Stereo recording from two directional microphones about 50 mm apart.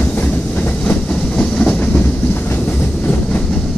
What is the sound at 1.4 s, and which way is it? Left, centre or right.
Train, left.